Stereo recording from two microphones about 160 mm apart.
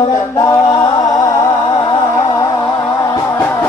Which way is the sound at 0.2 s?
20° left (ahead or behind).